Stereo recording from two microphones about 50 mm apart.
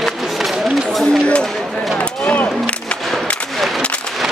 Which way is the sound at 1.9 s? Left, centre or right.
Left.